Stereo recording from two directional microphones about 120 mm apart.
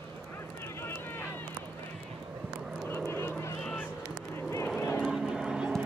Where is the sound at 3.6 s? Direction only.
5° left (ahead or behind).